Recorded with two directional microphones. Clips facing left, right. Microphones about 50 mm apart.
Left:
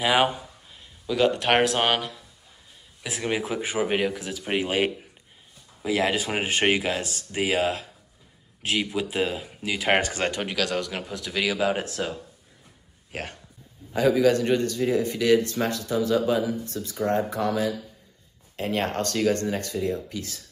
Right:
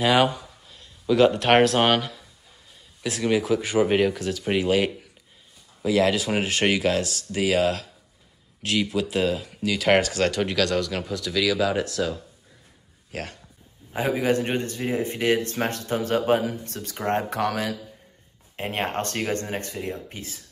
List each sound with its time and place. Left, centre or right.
0.2 s a sound: left
1.0 s speech: centre
3.0 s speech: centre
3.8 s speech: centre
4.6 s speech: left
10.4 s speech: centre; by 12.2 s left
13.1 s a man's voice: left
13.9 s speech: right
18.6 s speech: right